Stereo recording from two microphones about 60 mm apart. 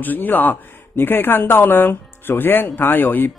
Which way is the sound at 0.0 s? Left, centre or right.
Left.